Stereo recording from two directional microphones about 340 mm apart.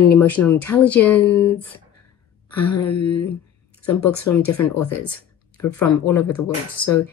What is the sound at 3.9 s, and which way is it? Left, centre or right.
Speech, left.